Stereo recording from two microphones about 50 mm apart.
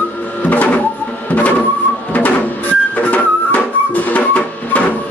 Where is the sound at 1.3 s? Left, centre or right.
Left.